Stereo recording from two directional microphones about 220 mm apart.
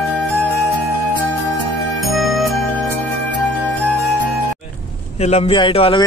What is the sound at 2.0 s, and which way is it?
Music, centre (ahead or behind).